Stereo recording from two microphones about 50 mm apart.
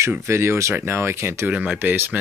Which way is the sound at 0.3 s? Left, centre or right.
Right.